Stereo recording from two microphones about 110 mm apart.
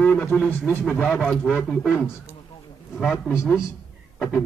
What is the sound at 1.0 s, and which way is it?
Speech, 10° left (ahead or behind).